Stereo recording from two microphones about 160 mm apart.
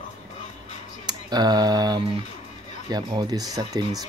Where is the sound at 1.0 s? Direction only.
25° right (ahead or behind).